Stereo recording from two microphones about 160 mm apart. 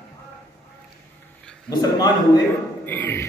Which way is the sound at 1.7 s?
25° left (ahead or behind).